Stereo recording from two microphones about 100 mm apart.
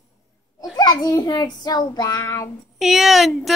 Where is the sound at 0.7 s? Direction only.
45° left (ahead or behind).